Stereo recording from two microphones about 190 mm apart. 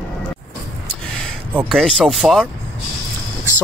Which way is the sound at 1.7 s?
5° left (ahead or behind).